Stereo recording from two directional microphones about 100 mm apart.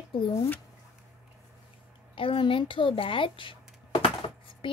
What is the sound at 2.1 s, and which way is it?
A woman's voice, 60° left (ahead or behind).